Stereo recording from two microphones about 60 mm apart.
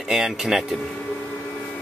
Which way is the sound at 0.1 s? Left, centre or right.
Centre.